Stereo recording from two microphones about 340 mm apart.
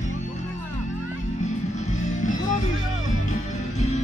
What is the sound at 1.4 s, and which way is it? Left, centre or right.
Music, left.